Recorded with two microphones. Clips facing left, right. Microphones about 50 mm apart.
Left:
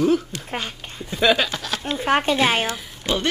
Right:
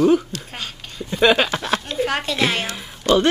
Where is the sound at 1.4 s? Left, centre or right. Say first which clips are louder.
Right 5 dB; right.